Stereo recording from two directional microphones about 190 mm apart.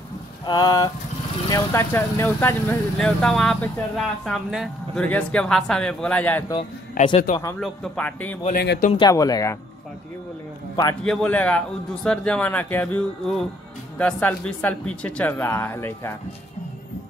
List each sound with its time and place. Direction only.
0.5 s speech: 20° left (ahead or behind)
6.5 s speech: 25° left (ahead or behind)
7.6 s speech: 5° left (ahead or behind)
8.5 s speech: 50° left (ahead or behind)
8.9 s speech: 20° left (ahead or behind)
11.1 s speech: 5° left (ahead or behind)